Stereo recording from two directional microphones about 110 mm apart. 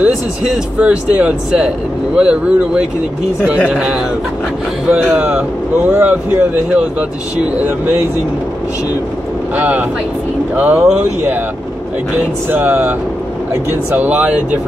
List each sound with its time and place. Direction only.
0.0 s speech: 10° right (ahead or behind)
5.1 s speech: 10° right (ahead or behind)
9.6 s speech: 15° right (ahead or behind)
12.4 s speech: 15° right (ahead or behind)
13.9 s speech: 15° right (ahead or behind)